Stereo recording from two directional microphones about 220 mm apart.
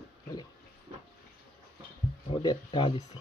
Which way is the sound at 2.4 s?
20° left (ahead or behind).